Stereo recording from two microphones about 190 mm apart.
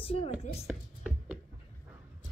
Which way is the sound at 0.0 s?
30° left (ahead or behind).